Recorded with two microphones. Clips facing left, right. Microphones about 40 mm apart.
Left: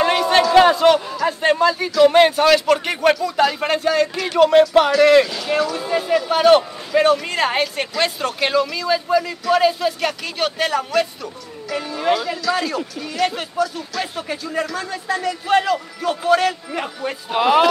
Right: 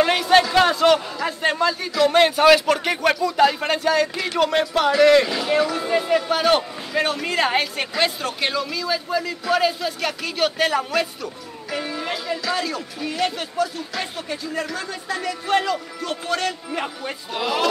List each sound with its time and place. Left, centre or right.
0.0 s a sound: centre
1.2 s speech: centre
2.4 s speech: centre
5.2 s speech: centre
11.7 s music: centre
12.1 s speech: centre
17.3 s speech: left